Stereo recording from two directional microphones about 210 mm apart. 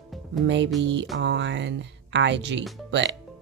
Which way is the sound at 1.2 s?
60° right (ahead or behind).